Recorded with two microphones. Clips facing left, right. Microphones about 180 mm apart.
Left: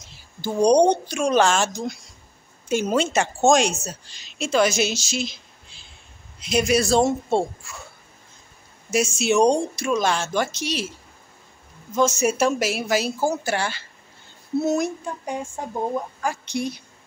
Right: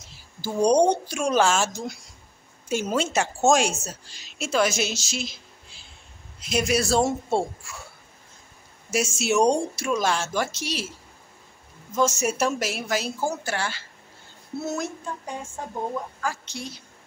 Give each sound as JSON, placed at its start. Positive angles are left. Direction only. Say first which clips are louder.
{"t": 0.4, "sound": "a woman's voice", "louder": "left 3 dB", "side_deg": -5}
{"t": 8.9, "sound": "speech", "louder": "left 3 dB", "side_deg": -5}
{"t": 11.9, "sound": "speech", "louder": "left 3 dB", "side_deg": 0}
{"t": 14.6, "sound": "a sound", "louder": "left 7 dB", "side_deg": 15}